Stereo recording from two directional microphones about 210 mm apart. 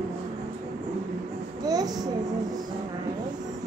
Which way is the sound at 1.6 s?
20° right (ahead or behind).